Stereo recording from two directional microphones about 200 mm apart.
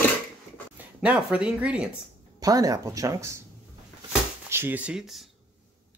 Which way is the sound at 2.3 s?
15° right (ahead or behind).